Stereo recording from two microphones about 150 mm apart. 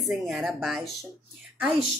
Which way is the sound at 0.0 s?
Centre (ahead or behind).